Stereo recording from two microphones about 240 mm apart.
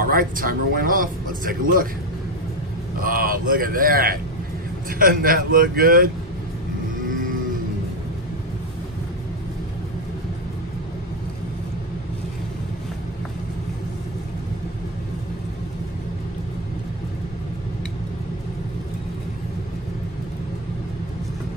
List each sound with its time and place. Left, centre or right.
0.0 s speech: right
3.0 s speech: right